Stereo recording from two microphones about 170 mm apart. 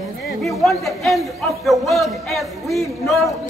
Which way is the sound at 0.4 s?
Centre (ahead or behind).